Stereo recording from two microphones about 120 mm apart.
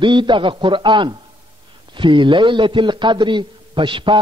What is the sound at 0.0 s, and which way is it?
A man's voice, 40° right (ahead or behind).